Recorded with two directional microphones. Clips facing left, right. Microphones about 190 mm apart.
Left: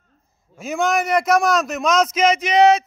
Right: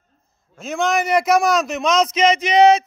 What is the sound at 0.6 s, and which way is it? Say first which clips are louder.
A man's voice: even; 5° left (ahead or behind).